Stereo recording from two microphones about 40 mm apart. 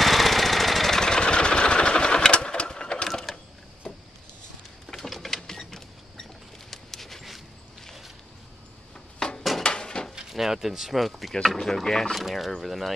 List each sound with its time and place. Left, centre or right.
0.0 s engine: centre; by 3.1 s left
3.3 s sewing machine: centre
4.9 s a sound: centre
9.2 s a sound: centre
10.3 s speech: centre
11.4 s speech: centre
12.2 s speech: centre